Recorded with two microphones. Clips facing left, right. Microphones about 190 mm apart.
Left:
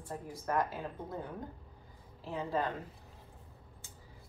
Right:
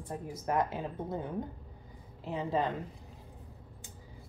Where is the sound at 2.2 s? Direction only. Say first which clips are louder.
Right 3 dB; 20° right (ahead or behind).